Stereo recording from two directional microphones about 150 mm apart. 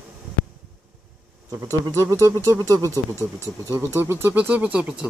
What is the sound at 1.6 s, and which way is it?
Speech, 20° right (ahead or behind).